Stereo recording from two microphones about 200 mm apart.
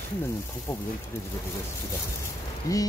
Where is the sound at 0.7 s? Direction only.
10° left (ahead or behind).